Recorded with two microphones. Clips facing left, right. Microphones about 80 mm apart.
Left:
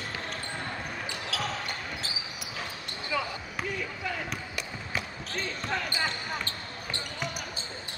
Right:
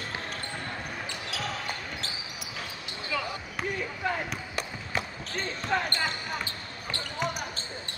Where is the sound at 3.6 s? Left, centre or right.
Right.